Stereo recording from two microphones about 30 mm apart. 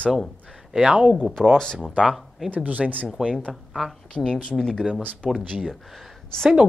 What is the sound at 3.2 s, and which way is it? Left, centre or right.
Speech, centre.